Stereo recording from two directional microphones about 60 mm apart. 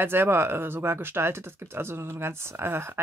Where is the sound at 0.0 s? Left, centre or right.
Right.